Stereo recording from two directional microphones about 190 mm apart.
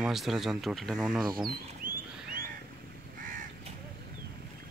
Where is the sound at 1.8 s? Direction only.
45° right (ahead or behind).